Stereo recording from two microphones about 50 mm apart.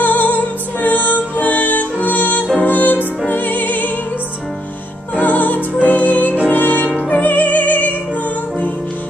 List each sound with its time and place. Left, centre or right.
0.0 s music: left
5.1 s music: left